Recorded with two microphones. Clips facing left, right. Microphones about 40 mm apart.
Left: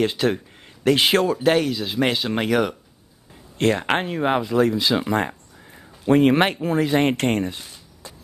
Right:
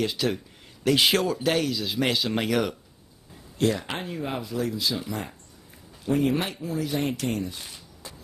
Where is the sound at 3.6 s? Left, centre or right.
Left.